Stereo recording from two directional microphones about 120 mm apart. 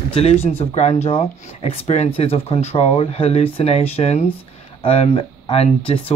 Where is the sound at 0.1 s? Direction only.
60° left (ahead or behind).